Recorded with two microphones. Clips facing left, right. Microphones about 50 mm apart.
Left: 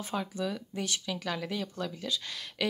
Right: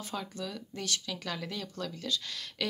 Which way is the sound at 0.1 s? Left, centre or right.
Centre.